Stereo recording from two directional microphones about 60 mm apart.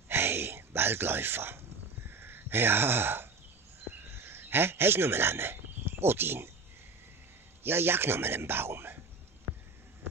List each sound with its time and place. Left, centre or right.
0.1 s gasp: right
2.0 s a sound: right
4.0 s speech: right
7.6 s speech: right